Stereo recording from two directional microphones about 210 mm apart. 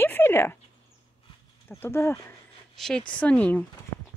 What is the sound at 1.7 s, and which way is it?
Speech, 10° left (ahead or behind).